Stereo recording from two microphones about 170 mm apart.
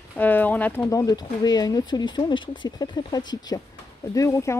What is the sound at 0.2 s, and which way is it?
Speech, 10° left (ahead or behind).